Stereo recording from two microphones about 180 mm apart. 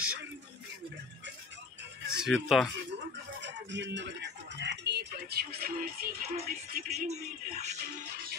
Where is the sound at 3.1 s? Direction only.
80° right; by 5.9 s 60° right (ahead or behind).